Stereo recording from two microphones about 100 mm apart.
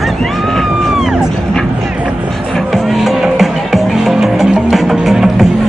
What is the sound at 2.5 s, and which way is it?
Music, centre (ahead or behind).